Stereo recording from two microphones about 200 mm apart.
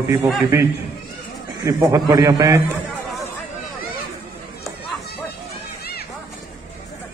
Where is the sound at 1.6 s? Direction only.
15° right (ahead or behind).